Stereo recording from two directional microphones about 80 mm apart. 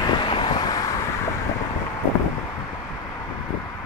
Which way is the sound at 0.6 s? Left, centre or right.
Left.